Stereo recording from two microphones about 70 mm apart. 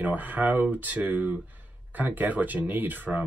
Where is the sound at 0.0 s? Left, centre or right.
Right.